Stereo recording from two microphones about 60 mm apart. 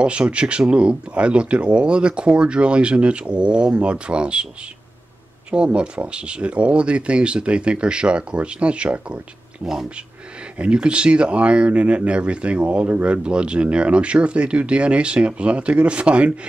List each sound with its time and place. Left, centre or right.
0.0 s speech: centre
5.5 s speech: centre
9.6 s speech: centre
10.6 s speech: centre